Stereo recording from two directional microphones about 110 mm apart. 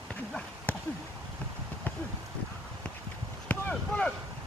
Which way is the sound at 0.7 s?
15° left (ahead or behind).